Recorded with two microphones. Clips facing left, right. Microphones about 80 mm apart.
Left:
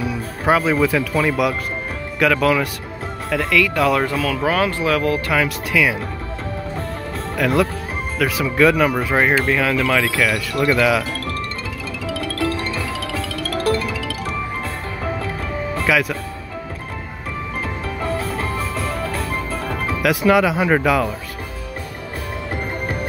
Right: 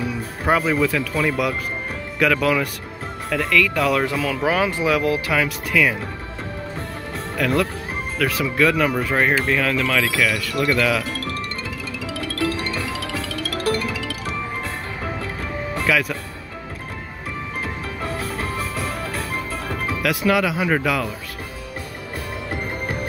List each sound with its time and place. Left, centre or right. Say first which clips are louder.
0.5 s speech: left 3 dB; centre
7.3 s speech: left 3 dB; centre
12.4 s music: even; left
13.1 s music: left 2 dB; left
15.9 s speech: left 2 dB; centre
20.0 s speech: left 4 dB; centre